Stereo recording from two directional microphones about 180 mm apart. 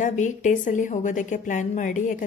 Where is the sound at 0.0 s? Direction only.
45° left (ahead or behind).